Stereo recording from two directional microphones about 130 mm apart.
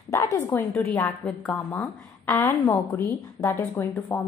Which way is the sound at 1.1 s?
10° left (ahead or behind).